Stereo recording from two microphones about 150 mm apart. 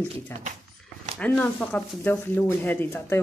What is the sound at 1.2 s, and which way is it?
Speech, 10° left (ahead or behind).